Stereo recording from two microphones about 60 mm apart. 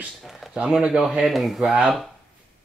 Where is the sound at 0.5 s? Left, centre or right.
Centre.